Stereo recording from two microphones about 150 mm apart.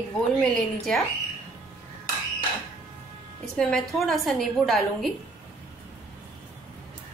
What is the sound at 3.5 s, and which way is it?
A woman's voice, 5° left (ahead or behind).